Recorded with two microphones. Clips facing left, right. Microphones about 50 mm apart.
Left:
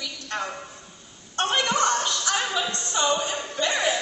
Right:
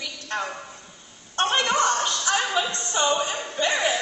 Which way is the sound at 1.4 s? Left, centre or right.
Right.